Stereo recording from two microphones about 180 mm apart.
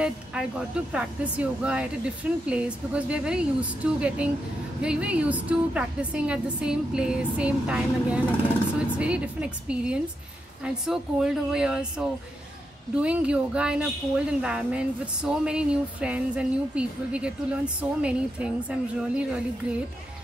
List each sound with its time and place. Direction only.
0.0 s a woman's voice: 5° right (ahead or behind)